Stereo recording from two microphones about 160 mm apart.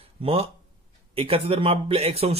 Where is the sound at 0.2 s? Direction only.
35° right (ahead or behind).